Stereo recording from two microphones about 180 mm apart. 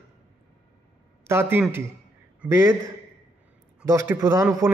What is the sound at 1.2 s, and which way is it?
A man's voice, 15° right (ahead or behind).